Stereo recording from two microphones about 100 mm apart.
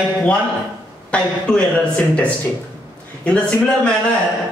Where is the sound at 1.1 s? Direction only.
10° left (ahead or behind).